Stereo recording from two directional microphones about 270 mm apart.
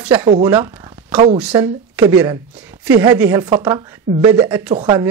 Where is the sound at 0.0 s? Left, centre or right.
Centre.